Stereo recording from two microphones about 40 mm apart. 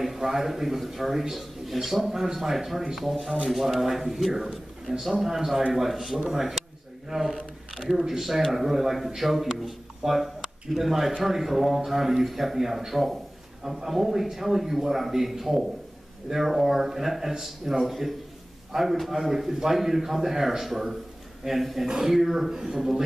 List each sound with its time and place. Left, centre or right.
0.0 s a man's voice: centre
2.0 s a man's voice: centre
7.7 s a sound: centre
8.0 s a man's voice: centre
21.8 s speech: centre
22.1 s speech: centre